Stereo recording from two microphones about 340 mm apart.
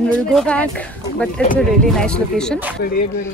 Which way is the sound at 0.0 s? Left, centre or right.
Centre.